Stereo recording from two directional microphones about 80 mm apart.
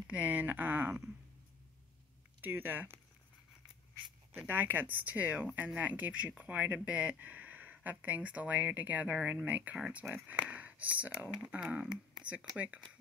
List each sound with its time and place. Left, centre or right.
0.0 s speech: centre
2.4 s speech: right
4.5 s speech: right
11.7 s speech: centre